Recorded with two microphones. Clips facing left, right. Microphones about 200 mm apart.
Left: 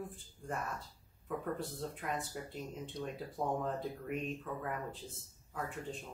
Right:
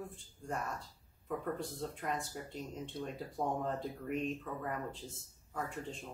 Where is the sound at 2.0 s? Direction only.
Centre (ahead or behind).